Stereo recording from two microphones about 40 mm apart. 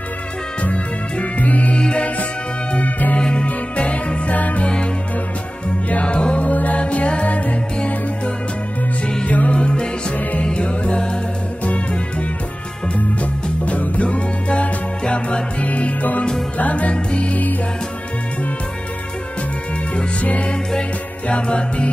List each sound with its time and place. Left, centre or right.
0.6 s music: left
1.8 s music: left
2.7 s music: left
3.2 s music: left
5.9 s music: left
9.2 s music: left
20.2 s music: left